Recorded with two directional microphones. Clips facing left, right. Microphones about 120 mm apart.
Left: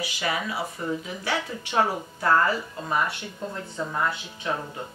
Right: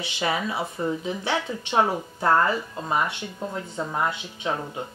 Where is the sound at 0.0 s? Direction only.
25° right (ahead or behind).